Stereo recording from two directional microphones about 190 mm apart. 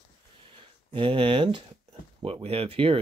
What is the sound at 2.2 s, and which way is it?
Speech, 30° right (ahead or behind).